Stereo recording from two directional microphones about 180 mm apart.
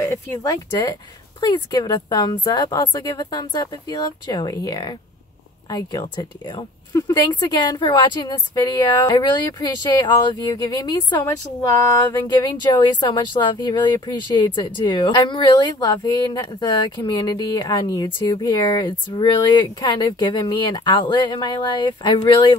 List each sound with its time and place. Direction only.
0.0 s speech: 15° left (ahead or behind)